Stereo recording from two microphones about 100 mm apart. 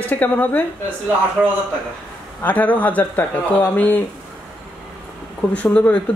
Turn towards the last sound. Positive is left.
turn(degrees=15)  # may be behind; listen again after turning